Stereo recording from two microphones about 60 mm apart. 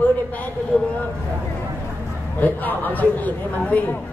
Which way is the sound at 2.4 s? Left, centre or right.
Left.